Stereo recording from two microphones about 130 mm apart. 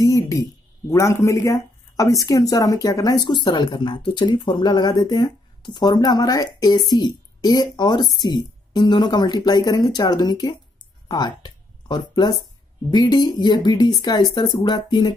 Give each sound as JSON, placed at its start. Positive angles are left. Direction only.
{"t": 0.0, "sound": "speech", "side_deg": 25}